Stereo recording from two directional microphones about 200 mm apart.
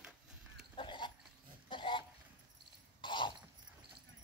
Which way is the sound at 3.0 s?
25° left (ahead or behind).